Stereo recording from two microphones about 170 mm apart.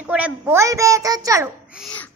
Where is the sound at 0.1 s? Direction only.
10° right (ahead or behind).